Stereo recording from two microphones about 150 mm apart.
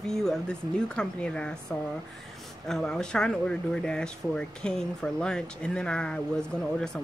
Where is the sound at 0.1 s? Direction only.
5° left (ahead or behind).